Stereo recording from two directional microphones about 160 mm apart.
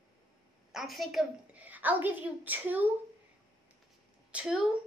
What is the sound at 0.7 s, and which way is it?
A child's voice, centre (ahead or behind).